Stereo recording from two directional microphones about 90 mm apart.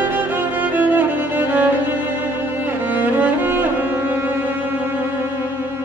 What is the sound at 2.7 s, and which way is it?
Cello, 20° right (ahead or behind).